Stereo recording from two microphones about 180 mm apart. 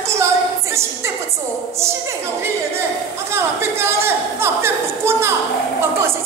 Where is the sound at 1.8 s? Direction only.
15° right (ahead or behind).